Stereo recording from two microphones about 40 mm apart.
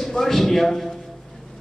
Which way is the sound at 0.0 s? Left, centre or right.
Centre.